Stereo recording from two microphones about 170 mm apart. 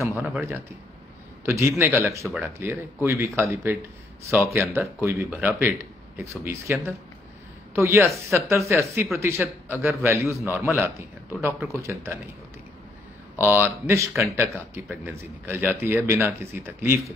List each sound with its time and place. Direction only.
1.4 s a man's voice: 15° right (ahead or behind)
4.3 s speech: centre (ahead or behind)
4.6 s a man's voice: 15° right (ahead or behind)
13.4 s a man's voice: 10° right (ahead or behind)